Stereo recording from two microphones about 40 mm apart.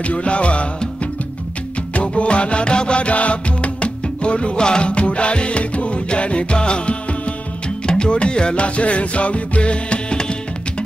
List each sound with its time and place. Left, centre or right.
0.0 s music: left
2.0 s music: left